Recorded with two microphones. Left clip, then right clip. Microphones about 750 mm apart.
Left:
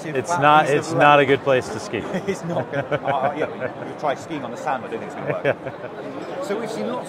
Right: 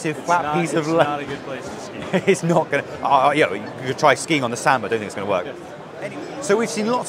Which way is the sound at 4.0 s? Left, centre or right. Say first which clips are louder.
Right 9 dB; right.